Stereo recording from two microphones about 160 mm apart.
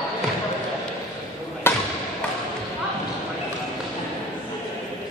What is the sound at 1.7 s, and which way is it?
Basketball bounce, 15° left (ahead or behind).